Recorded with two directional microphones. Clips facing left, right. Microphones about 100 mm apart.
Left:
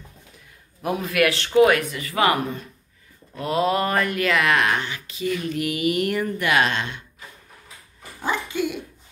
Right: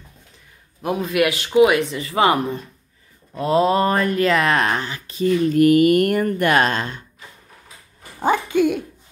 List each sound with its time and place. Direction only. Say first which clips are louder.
0.8 s a man's voice: right 2 dB; centre (ahead or behind)
1.3 s speech: right 1 dB; 10° right (ahead or behind)
1.8 s speech: right 4 dB; 30° right (ahead or behind)
8.2 s speech: right 8 dB; 50° right (ahead or behind)